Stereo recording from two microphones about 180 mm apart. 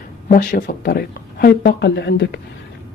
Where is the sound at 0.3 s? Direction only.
50° left (ahead or behind); by 2.4 s 70° left (ahead or behind).